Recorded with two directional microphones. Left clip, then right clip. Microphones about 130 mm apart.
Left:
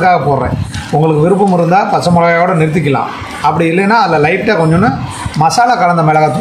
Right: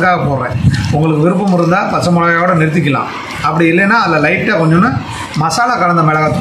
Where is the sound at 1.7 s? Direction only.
50° left (ahead or behind).